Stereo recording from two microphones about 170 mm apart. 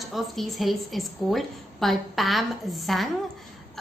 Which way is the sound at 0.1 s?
Centre (ahead or behind).